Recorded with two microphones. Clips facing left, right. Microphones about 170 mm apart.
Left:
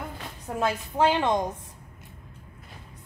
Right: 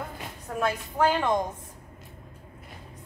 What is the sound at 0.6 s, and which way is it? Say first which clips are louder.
Speech: left 1 dB; 20° left (ahead or behind).